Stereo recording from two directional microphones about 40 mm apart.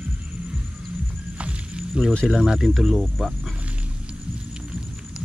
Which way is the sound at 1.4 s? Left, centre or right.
Right.